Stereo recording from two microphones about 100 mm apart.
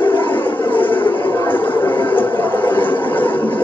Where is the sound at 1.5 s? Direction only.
20° left (ahead or behind).